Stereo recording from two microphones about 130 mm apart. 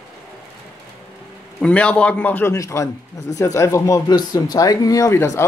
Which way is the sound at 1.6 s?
10° left (ahead or behind).